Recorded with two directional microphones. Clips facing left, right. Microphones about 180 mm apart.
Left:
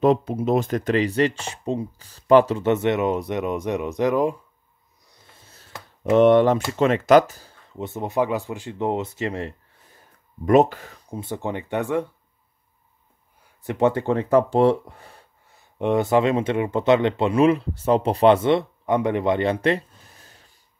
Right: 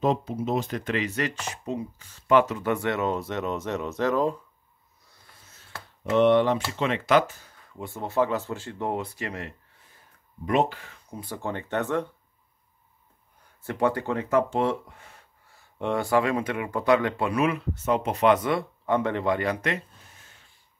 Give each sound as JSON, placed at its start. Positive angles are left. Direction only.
{"t": 0.0, "sound": "speech", "side_deg": 60}
{"t": 5.1, "sound": "a sound", "side_deg": 25}
{"t": 6.1, "sound": "speech", "side_deg": 45}
{"t": 7.7, "sound": "speech", "side_deg": 20}
{"t": 10.4, "sound": "speech", "side_deg": 45}
{"t": 11.1, "sound": "speech", "side_deg": 20}
{"t": 13.7, "sound": "speech", "side_deg": 25}
{"t": 15.5, "sound": "speech", "side_deg": 20}